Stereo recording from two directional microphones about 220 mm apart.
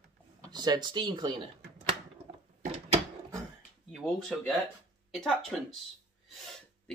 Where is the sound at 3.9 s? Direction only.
Centre (ahead or behind).